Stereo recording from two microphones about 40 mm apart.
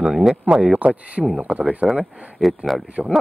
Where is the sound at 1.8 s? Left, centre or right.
Centre.